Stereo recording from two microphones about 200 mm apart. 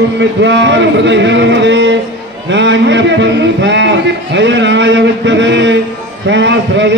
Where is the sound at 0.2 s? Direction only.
65° right (ahead or behind).